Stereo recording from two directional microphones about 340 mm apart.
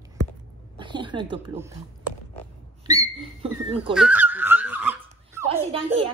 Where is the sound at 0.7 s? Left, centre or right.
Centre.